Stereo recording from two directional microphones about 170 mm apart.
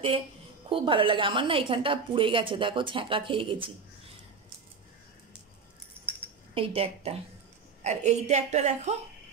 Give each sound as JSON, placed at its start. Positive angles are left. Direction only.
{"t": 0.7, "sound": "a woman's voice", "side_deg": -30}
{"t": 6.5, "sound": "a woman's voice", "side_deg": -35}